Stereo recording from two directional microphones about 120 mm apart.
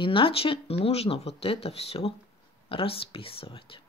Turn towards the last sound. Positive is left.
turn(degrees=50)  # may be behind; listen again after turning